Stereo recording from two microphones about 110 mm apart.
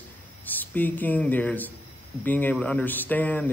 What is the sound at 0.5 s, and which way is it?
A man's voice, 15° left (ahead or behind).